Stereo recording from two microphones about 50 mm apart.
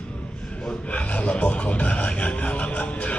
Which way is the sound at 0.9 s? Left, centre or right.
Left.